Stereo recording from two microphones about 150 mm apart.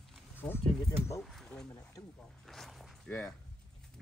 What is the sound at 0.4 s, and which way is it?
Speech, 15° left (ahead or behind).